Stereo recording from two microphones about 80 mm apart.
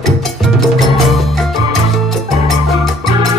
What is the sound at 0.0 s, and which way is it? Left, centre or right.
Music, centre.